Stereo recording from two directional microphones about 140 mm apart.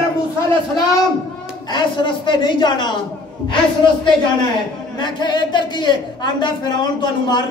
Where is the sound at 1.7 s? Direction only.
35° left (ahead or behind).